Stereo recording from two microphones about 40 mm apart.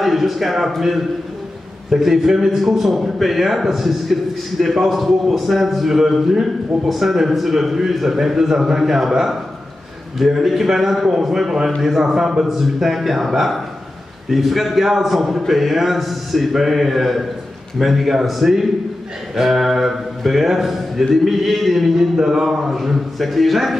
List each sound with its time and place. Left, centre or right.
0.0 s a man's voice: centre